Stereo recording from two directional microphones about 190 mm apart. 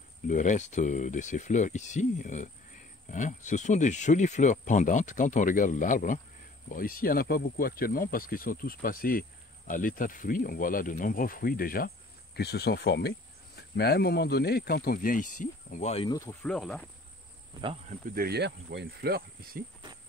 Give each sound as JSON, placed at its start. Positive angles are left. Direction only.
{"t": 0.3, "sound": "speech", "side_deg": 40}
{"t": 16.1, "sound": "speech", "side_deg": 20}
{"t": 16.4, "sound": "speech", "side_deg": 5}
{"t": 17.8, "sound": "speech", "side_deg": -50}